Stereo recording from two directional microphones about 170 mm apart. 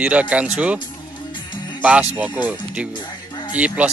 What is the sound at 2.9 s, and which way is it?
Music, 25° left (ahead or behind).